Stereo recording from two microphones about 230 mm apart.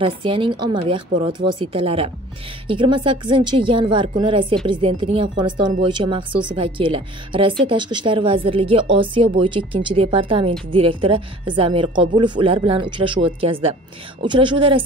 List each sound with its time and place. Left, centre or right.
0.0 s speech: right